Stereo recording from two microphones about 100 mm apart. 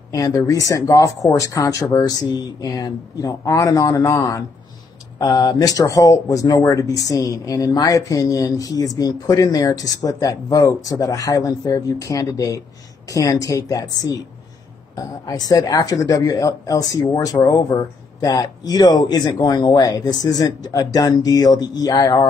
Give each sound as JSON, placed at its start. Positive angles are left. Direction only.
{"t": 0.1, "sound": "speech", "side_deg": 35}
{"t": 15.2, "sound": "speech", "side_deg": 40}